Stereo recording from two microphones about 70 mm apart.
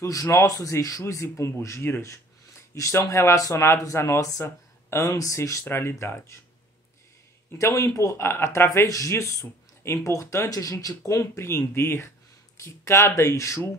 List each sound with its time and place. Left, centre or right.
0.0 s speech: left
1.0 s speech: left
2.7 s speech: left
5.7 s speech: left
7.5 s speech: left
11.1 s speech: left